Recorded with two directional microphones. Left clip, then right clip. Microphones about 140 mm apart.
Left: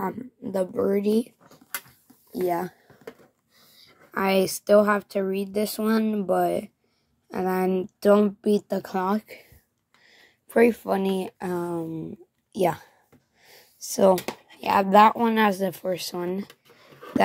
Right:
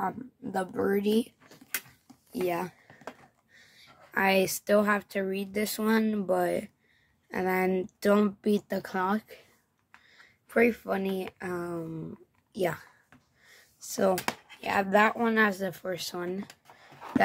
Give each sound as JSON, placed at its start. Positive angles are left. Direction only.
{"t": 0.5, "sound": "speech", "side_deg": 0}
{"t": 2.4, "sound": "speech", "side_deg": 0}
{"t": 3.7, "sound": "speech", "side_deg": 0}
{"t": 8.9, "sound": "speech", "side_deg": 20}
{"t": 13.4, "sound": "a sound", "side_deg": 35}
{"t": 14.6, "sound": "speech", "side_deg": 25}
{"t": 15.4, "sound": "speech", "side_deg": 30}